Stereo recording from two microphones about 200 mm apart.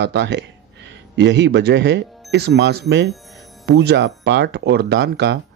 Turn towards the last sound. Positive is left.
turn(degrees=-55)  # may be behind; listen again after turning